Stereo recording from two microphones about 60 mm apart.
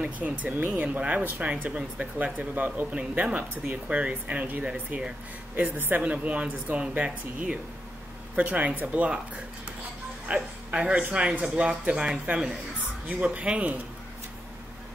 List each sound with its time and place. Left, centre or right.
0.0 s speech: right
8.4 s speech: right
10.2 s speech: centre
13.2 s speech: right